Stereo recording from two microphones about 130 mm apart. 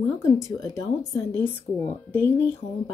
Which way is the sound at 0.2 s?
20° left (ahead or behind).